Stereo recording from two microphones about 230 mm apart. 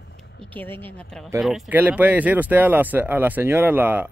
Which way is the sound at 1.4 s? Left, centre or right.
Centre.